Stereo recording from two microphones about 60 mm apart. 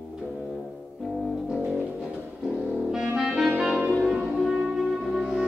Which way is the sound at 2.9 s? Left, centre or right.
Centre.